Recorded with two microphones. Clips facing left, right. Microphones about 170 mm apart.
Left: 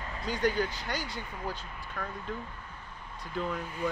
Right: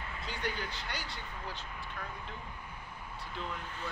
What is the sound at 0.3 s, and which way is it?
Speech, 45° left (ahead or behind).